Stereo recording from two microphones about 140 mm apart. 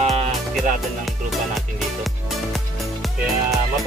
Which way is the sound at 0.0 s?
50° right (ahead or behind).